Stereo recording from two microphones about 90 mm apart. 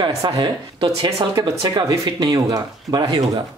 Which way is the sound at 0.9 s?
90° right.